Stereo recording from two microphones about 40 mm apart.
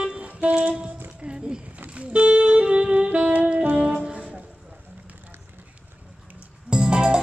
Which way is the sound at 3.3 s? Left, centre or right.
Right.